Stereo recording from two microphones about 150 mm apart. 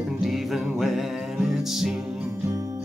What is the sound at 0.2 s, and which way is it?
Music, centre (ahead or behind).